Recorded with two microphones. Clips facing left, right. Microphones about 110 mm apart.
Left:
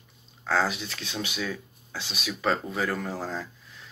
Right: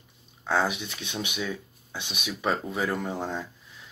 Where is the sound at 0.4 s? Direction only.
15° right (ahead or behind).